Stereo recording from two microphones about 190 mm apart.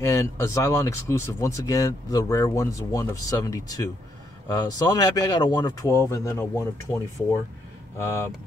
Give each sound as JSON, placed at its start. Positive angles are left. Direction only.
{"t": 0.0, "sound": "speech", "side_deg": 15}